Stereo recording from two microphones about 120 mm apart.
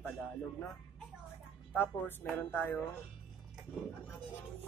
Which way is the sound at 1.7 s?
15° left (ahead or behind).